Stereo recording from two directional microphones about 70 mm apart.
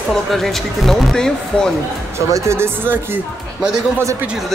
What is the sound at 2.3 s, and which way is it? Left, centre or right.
Speech, right.